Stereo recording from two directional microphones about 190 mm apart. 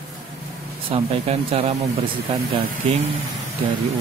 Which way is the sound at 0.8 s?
30° right (ahead or behind).